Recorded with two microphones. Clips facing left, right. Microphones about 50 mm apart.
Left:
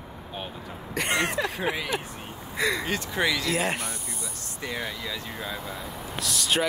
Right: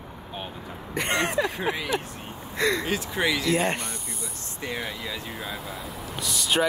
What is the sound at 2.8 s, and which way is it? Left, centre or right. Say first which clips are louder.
Speech: right 1 dB; centre.